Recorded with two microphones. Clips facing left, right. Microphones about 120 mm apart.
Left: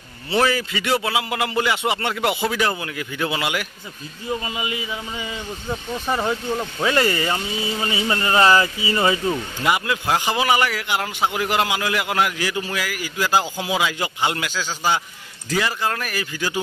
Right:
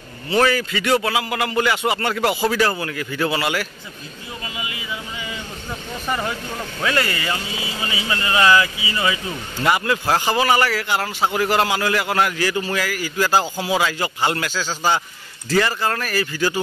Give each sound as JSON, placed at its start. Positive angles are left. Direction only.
{"t": 0.4, "sound": "a man's voice", "side_deg": 20}
{"t": 6.0, "sound": "a man's voice", "side_deg": 15}
{"t": 7.8, "sound": "speech", "side_deg": 35}
{"t": 9.6, "sound": "a man's voice", "side_deg": 15}